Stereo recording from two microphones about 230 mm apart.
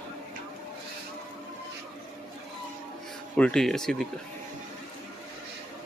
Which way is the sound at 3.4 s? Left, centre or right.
Centre.